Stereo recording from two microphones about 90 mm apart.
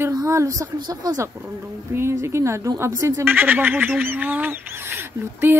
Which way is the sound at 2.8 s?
30° right (ahead or behind).